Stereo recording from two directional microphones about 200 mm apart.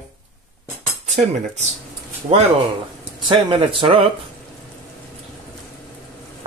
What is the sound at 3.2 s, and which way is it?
Speech, 25° right (ahead or behind).